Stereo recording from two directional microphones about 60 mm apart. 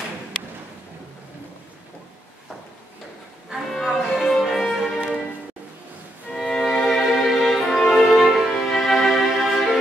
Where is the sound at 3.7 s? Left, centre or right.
Centre.